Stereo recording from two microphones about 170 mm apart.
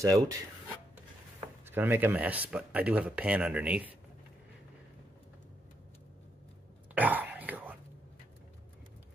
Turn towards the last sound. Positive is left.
turn(degrees=-10)  # may be behind; listen again after turning